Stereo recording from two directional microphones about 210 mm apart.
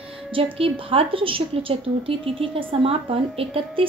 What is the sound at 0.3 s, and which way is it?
A woman's voice, 25° right (ahead or behind).